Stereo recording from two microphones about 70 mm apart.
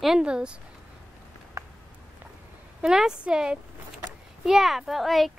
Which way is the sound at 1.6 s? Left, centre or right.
Right.